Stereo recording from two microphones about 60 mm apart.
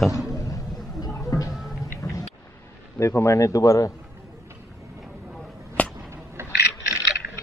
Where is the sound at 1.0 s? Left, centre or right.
Left.